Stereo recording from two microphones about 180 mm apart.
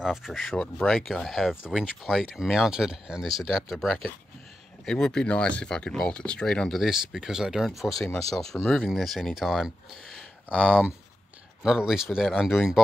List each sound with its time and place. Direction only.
0.0 s speech: centre (ahead or behind)
10.1 s a sound: 5° right (ahead or behind)
11.6 s speech: 5° right (ahead or behind)